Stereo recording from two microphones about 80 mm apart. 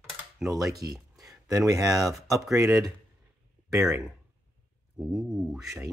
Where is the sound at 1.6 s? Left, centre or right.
Right.